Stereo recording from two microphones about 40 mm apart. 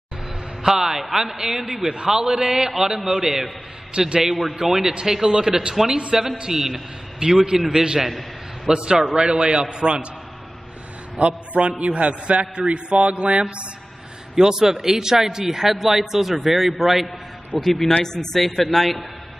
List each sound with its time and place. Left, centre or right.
0.6 s a man's voice: centre
1.9 s a man's voice: centre
3.9 s a man's voice: right
4.6 s a man's voice: centre
11.1 s a man's voice: right
14.3 s a man's voice: centre